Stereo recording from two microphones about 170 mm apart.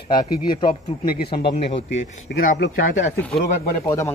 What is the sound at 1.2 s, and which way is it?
Speech, 70° left (ahead or behind).